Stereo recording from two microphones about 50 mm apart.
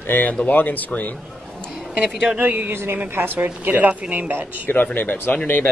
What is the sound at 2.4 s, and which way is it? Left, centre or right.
Speech, right.